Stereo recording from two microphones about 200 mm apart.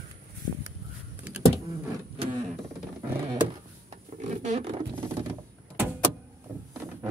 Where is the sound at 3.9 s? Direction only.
35° right (ahead or behind).